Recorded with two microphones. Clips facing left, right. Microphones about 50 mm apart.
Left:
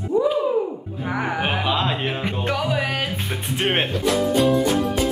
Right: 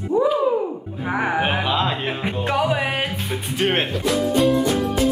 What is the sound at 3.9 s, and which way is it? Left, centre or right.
Speech, centre.